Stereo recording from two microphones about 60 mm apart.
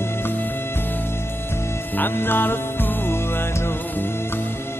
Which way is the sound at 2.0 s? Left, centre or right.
Left.